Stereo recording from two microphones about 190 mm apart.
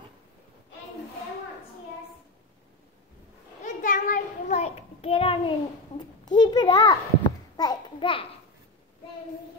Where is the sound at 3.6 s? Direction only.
40° left (ahead or behind).